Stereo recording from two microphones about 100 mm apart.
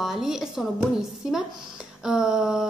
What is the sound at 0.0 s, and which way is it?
A woman's voice, 5° right (ahead or behind).